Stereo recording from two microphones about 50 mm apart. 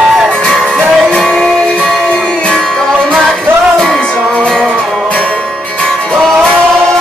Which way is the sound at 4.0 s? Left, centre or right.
Left.